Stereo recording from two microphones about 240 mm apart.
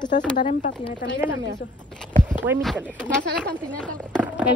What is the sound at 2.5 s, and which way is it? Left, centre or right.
Speech, centre.